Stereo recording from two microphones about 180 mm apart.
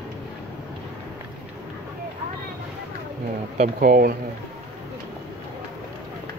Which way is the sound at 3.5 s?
50° right (ahead or behind).